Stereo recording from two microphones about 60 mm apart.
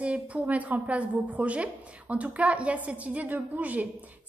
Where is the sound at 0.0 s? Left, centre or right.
Right.